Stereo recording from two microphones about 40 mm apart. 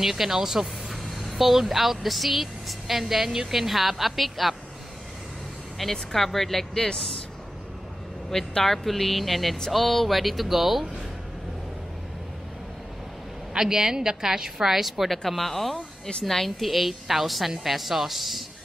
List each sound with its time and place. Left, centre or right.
0.0 s speech: centre
1.1 s a woman's voice: centre
5.8 s a woman's voice: centre
8.3 s a woman's voice: centre
13.5 s a woman's voice: centre
15.0 s a woman's voice: centre